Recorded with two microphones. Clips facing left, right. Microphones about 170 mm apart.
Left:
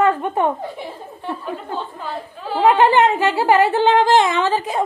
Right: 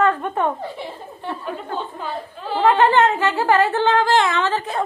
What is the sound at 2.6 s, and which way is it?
Speech, 15° left (ahead or behind).